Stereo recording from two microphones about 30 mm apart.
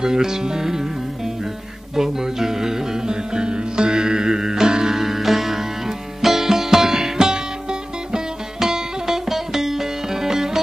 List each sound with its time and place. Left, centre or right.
0.0 s speech: centre
2.0 s music: centre
8.5 s music: centre